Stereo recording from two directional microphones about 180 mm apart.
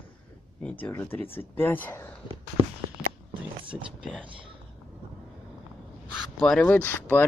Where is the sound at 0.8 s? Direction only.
10° left (ahead or behind).